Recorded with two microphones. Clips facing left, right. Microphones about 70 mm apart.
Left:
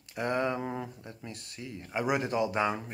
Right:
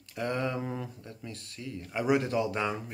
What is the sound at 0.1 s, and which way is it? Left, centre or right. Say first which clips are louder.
Speech: left 2 dB; left.